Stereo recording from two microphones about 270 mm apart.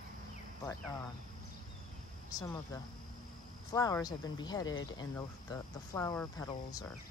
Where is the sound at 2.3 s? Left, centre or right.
Centre.